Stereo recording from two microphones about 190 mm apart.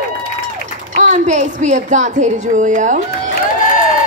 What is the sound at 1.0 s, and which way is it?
Speech, 40° right (ahead or behind).